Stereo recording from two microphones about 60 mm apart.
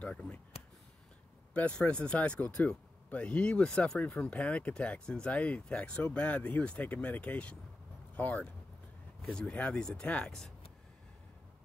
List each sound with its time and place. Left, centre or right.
0.0 s speech: left
1.5 s speech: left